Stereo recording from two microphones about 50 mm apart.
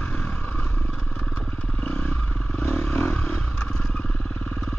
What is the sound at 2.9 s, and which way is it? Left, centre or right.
Vehicle, left.